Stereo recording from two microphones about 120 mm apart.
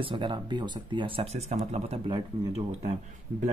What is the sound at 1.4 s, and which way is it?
Speech, 70° right (ahead or behind).